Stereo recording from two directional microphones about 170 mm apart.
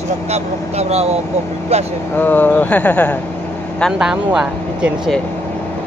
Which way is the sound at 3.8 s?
Centre (ahead or behind).